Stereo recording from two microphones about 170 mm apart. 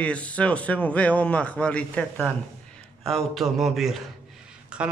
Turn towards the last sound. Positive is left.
turn(degrees=-5)  # may be behind; listen again after turning